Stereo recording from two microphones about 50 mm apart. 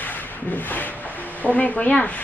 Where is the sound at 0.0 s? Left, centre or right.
Left.